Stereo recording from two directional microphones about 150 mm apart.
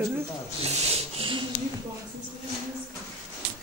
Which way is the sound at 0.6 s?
45° right (ahead or behind).